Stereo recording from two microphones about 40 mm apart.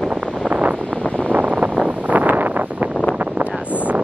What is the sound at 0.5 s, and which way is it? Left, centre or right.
Wind noise, right.